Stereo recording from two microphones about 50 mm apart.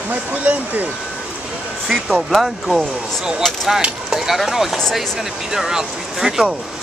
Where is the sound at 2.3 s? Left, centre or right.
Centre.